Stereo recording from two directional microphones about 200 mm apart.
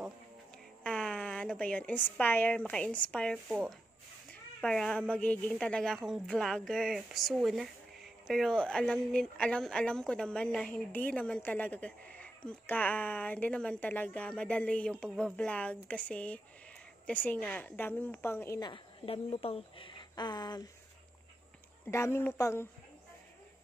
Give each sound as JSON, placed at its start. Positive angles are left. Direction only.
{"t": 0.8, "sound": "a woman's voice", "side_deg": 5}
{"t": 21.8, "sound": "a woman's voice", "side_deg": 15}